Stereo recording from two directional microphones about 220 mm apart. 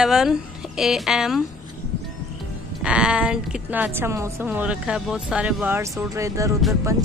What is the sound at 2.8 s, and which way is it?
A woman's voice, 5° right (ahead or behind).